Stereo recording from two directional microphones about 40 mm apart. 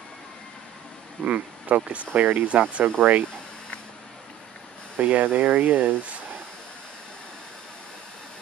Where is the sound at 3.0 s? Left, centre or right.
Right.